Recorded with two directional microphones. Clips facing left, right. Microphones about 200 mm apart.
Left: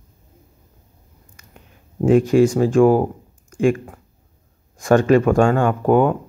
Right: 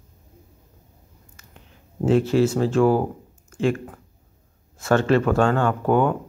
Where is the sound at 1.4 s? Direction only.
15° left (ahead or behind).